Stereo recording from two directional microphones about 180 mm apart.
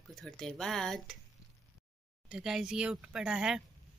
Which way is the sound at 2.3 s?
Centre (ahead or behind).